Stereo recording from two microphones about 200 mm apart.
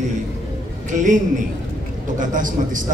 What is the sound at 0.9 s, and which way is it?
A man's voice, 40° right (ahead or behind).